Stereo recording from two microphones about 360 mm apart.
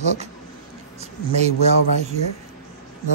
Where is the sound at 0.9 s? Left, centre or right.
Centre.